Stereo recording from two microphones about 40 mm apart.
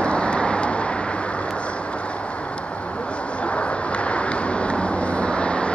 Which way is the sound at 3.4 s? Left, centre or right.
Left.